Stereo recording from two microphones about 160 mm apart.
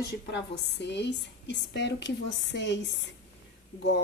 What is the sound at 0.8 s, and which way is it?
A woman's voice, 90° left.